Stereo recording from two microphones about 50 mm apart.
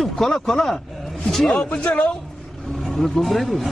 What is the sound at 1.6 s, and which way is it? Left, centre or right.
Speech, centre.